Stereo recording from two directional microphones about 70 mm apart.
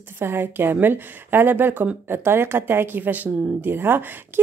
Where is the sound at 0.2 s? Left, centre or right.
Right.